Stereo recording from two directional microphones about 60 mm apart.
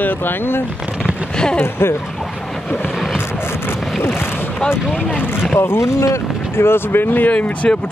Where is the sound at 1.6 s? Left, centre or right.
Left.